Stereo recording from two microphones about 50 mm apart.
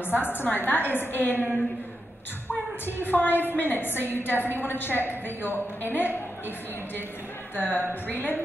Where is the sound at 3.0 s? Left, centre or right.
Left.